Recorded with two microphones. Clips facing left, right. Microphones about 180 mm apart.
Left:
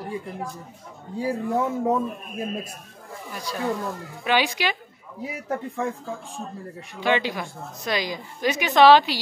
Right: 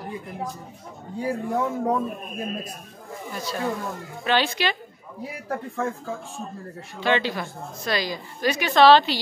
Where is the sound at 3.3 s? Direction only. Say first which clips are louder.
Left 1 dB; 15° left (ahead or behind).